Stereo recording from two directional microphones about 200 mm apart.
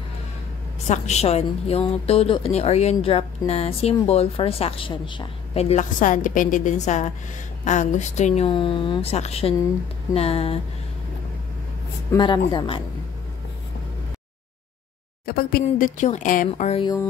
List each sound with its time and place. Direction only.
0.8 s a woman's voice: 35° left (ahead or behind)
12.1 s speech: 20° left (ahead or behind)
15.2 s a woman's voice: 50° left (ahead or behind); by 16.8 s 30° left (ahead or behind)